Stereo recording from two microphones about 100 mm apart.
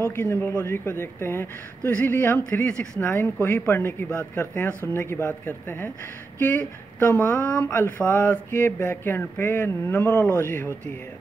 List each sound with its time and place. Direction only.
0.1 s speech: 20° left (ahead or behind)
7.0 s speech: 20° left (ahead or behind)